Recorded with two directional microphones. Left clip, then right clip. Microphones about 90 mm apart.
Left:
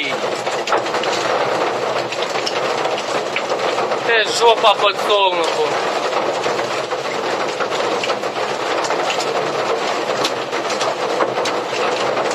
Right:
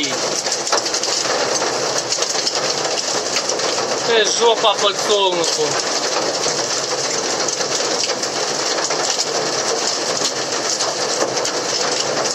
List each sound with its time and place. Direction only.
4.1 s speech: 30° right (ahead or behind)